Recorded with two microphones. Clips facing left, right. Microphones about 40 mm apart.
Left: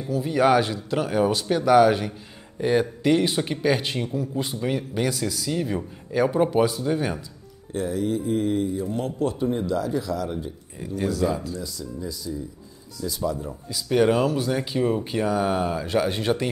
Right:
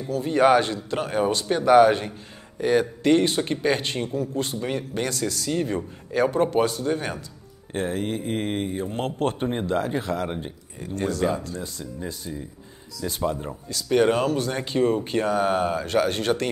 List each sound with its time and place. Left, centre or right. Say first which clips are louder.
0.3 s speech: right 1 dB; centre
2.6 s speech: even; centre
5.5 s speech: right 2 dB; centre
7.7 s speech: left 1 dB; right
13.8 s speech: even; centre
15.8 s speech: right 1 dB; centre